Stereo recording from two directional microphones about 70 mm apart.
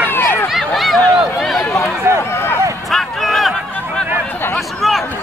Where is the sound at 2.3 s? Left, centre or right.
Left.